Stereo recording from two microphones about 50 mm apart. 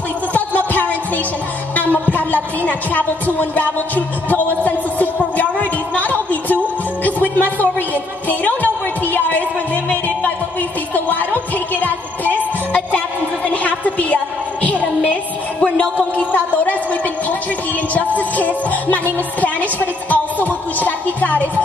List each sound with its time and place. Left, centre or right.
0.3 s music: left
1.8 s a woman's voice: left
3.3 s music: left
7.1 s a sound: left
11.7 s music: left
13.5 s a sound: left
15.6 s music: left
16.2 s a sound: left
17.9 s a woman's voice: left